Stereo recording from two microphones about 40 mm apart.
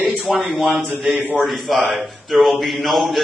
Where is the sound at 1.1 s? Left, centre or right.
Right.